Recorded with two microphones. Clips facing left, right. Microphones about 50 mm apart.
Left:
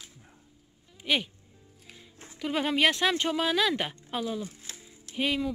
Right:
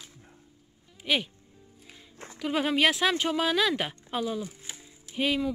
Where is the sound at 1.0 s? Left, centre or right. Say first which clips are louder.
Even; centre.